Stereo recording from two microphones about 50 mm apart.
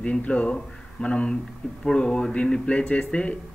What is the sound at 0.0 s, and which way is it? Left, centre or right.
A man's voice, left.